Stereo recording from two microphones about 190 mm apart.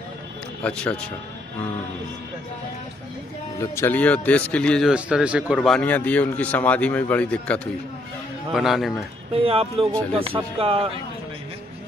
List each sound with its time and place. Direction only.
0.6 s speech: 5° left (ahead or behind)
3.5 s speech: 15° left (ahead or behind)
9.3 s speech: 30° right (ahead or behind)